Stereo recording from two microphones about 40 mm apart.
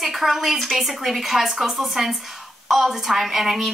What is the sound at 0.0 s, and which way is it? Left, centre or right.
A woman's voice, centre.